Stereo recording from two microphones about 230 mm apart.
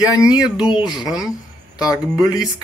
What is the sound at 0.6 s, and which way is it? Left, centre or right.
Speech, centre.